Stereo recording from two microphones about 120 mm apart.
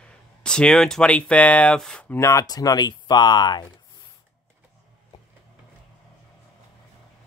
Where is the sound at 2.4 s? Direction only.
35° left (ahead or behind).